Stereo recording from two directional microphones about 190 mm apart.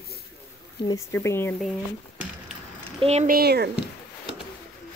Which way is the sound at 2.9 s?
30° right (ahead or behind).